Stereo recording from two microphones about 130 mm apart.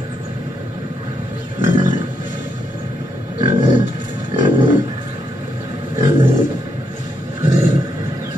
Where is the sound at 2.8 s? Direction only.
35° right (ahead or behind).